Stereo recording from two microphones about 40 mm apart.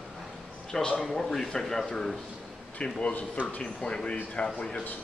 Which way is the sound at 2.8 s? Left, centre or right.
Left.